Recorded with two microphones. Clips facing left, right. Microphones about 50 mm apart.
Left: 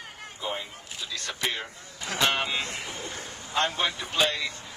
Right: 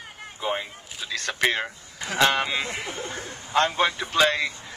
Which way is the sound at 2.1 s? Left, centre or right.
Right.